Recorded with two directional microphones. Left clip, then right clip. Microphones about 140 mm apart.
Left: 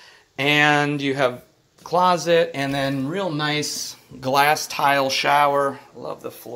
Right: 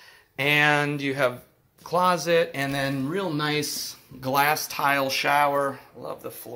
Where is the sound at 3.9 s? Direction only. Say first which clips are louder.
Left 5 dB; 40° left (ahead or behind).